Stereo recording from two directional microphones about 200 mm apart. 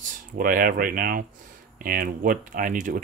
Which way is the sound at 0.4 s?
45° right (ahead or behind).